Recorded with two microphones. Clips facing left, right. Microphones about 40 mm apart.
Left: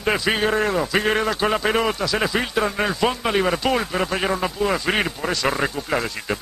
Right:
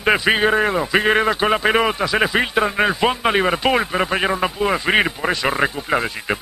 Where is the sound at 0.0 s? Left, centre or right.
Right.